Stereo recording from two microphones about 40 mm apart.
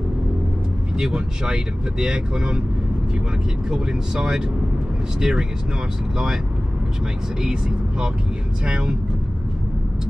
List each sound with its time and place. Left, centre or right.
0.9 s speech: centre
3.7 s speech: centre
8.6 s speech: right